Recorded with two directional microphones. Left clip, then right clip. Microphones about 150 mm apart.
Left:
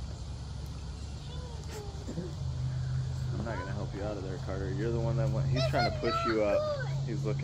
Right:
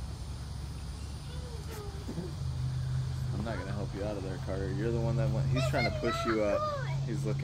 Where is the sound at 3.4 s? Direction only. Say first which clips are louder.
Even; 25° right (ahead or behind).